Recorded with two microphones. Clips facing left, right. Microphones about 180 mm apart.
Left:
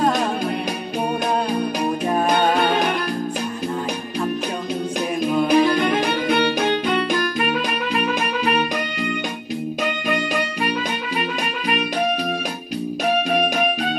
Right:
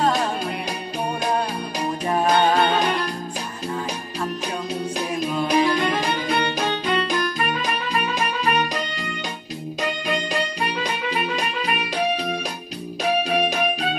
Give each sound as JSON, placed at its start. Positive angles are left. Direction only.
{"t": 5.5, "sound": "music", "side_deg": 55}